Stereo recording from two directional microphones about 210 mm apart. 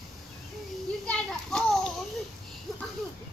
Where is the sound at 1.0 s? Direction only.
5° left (ahead or behind).